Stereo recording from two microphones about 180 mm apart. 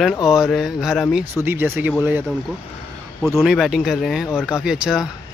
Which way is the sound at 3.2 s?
Centre (ahead or behind).